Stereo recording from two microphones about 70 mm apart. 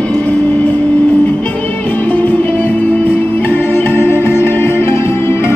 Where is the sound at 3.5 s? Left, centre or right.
Left.